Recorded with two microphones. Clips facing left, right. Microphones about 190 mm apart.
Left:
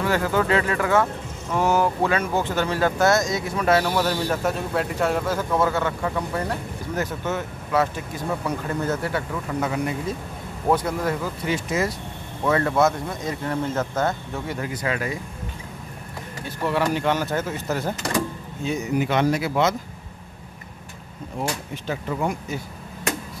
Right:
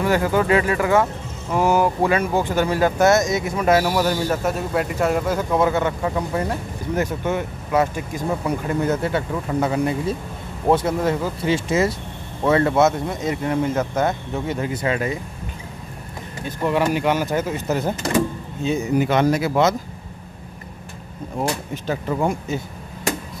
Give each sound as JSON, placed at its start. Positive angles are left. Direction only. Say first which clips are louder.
{"t": 0.0, "sound": "a man's voice", "louder": "right 3 dB", "side_deg": -15}
{"t": 3.5, "sound": "a man's voice", "louder": "right 2 dB", "side_deg": -10}
{"t": 16.4, "sound": "a man's voice", "louder": "right 3 dB", "side_deg": -20}
{"t": 18.9, "sound": "speech", "louder": "right 3 dB", "side_deg": -45}
{"t": 21.4, "sound": "speech", "louder": "right 4 dB", "side_deg": -40}